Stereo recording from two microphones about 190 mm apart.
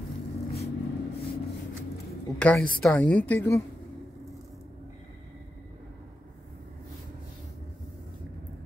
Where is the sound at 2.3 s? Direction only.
5° left (ahead or behind).